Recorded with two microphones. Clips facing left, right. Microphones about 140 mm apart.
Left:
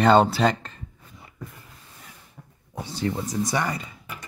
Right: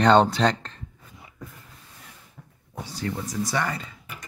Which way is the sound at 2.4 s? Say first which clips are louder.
Left 1 dB; 10° left (ahead or behind).